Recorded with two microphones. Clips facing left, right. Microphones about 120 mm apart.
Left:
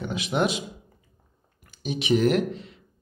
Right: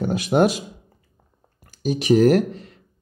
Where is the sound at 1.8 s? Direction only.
40° right (ahead or behind).